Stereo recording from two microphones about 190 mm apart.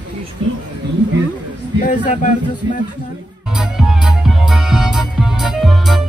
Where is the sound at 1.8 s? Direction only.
40° left (ahead or behind).